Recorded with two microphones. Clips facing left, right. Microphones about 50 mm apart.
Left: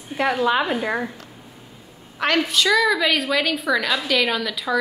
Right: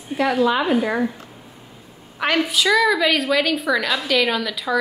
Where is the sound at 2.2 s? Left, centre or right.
Centre.